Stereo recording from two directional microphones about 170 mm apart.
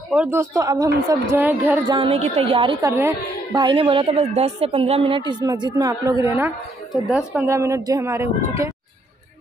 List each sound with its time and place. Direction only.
0.1 s speech: 10° right (ahead or behind)
1.9 s a woman's voice: 30° right (ahead or behind)
2.8 s speech: 15° right (ahead or behind)
3.6 s a woman's voice: 30° right (ahead or behind)
6.3 s speech: 10° right (ahead or behind)